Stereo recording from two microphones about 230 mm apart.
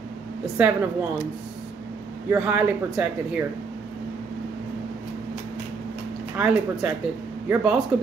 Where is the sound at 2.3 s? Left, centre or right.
Centre.